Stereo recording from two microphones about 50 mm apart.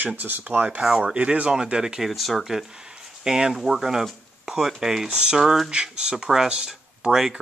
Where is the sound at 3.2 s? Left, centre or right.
Centre.